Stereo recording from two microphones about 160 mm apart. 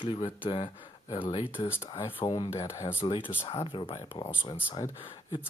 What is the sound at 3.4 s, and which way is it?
Speech, 35° left (ahead or behind).